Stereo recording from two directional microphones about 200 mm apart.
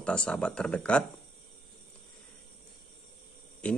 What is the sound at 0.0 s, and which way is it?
Speech, 5° left (ahead or behind).